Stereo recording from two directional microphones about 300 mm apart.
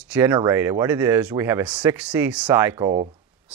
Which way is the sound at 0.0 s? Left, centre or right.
Centre.